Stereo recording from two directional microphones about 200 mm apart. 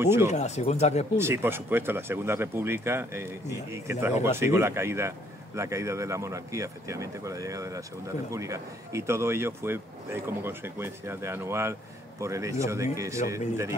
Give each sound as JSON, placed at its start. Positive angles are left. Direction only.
{"t": 0.0, "sound": "a man's voice", "side_deg": -10}
{"t": 0.3, "sound": "speech", "side_deg": 35}
{"t": 1.1, "sound": "a man's voice", "side_deg": -10}